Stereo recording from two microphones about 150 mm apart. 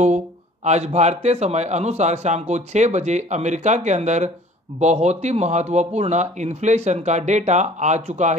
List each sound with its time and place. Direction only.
0.7 s a man's voice: 50° right (ahead or behind)